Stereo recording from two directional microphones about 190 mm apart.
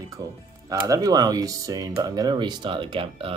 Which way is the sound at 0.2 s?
20° right (ahead or behind).